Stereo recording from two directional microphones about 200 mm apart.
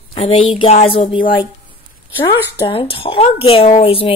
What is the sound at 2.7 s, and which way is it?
Speech, 30° left (ahead or behind).